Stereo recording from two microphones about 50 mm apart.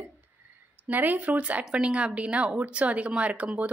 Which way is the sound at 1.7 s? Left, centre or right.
Centre.